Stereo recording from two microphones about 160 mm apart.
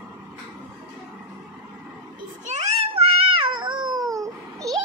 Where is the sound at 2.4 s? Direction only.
45° right (ahead or behind); by 4.7 s 20° right (ahead or behind).